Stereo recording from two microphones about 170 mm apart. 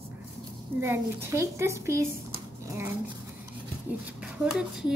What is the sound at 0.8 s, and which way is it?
A woman's voice, 15° right (ahead or behind).